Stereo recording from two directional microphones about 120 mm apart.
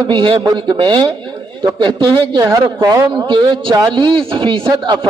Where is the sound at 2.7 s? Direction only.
30° right (ahead or behind).